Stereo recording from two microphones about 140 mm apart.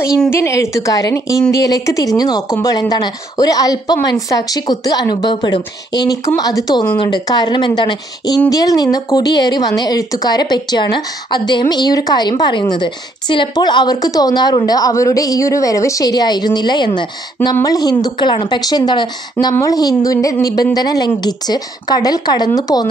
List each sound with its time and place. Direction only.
0.3 s speech: 20° left (ahead or behind)